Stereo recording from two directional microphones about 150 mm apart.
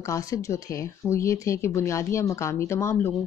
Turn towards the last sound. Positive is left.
turn(degrees=15)  # may be behind; listen again after turning